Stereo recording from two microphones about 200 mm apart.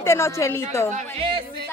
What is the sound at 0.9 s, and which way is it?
Speech, 35° right (ahead or behind).